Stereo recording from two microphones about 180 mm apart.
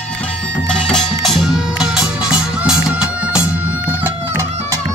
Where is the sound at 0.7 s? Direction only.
5° left (ahead or behind).